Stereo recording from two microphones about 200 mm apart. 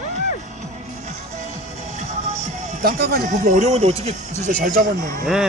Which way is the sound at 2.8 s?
50° right (ahead or behind).